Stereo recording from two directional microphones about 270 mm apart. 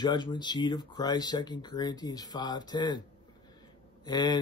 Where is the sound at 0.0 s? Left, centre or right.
Centre.